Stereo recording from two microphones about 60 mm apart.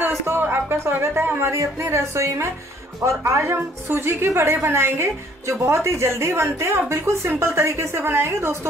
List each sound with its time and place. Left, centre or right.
0.0 s speech: right
3.3 s a woman's voice: right